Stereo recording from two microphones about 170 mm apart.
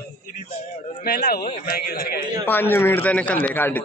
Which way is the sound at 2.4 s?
10° left (ahead or behind).